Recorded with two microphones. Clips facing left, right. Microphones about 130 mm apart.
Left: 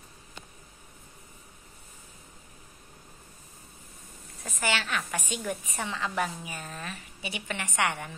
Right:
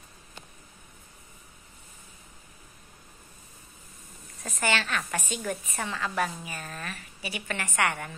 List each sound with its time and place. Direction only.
4.4 s a woman's voice: 10° left (ahead or behind)